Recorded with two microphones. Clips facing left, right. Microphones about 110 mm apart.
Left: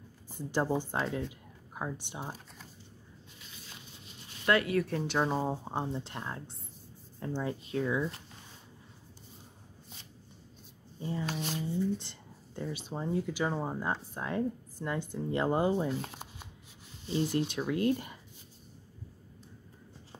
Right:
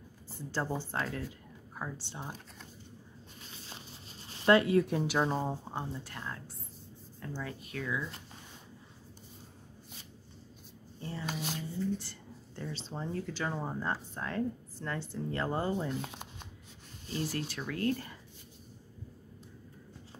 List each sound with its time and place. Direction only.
0.3 s a woman's voice: 15° left (ahead or behind)
2.1 s speech: 5° left (ahead or behind)
3.4 s a sound: 35° right (ahead or behind)
4.3 s speech: 25° right (ahead or behind)
4.9 s speech: 5° right (ahead or behind)
5.4 s speech: 15° left (ahead or behind)
11.0 s speech: 15° left (ahead or behind)
11.2 s speech: centre (ahead or behind)
11.8 s a sound: 20° left (ahead or behind)
12.7 s a woman's voice: 15° left (ahead or behind)
15.9 s shuffling cards: centre (ahead or behind)
17.3 s speech: 20° left (ahead or behind)